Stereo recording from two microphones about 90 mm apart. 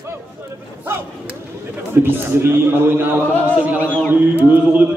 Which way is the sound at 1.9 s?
25° right (ahead or behind).